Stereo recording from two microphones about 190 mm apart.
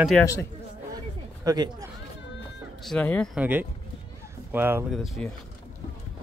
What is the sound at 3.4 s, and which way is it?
Speech, 10° right (ahead or behind).